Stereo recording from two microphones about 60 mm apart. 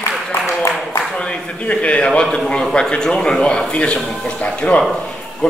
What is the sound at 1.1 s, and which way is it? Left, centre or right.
A man's voice, centre.